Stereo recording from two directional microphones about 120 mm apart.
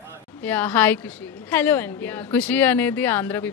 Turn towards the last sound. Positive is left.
turn(degrees=15)  # may be behind; listen again after turning